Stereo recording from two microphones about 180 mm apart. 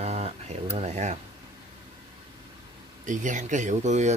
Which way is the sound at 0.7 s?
40° right (ahead or behind).